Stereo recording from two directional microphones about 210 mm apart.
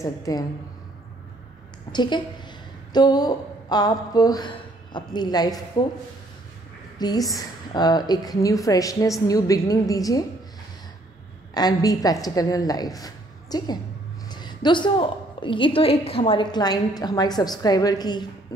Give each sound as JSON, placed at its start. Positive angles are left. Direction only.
{"t": 0.0, "sound": "a woman's voice", "side_deg": 15}
{"t": 1.9, "sound": "a woman's voice", "side_deg": 20}
{"t": 7.0, "sound": "a woman's voice", "side_deg": 20}
{"t": 11.5, "sound": "a woman's voice", "side_deg": 20}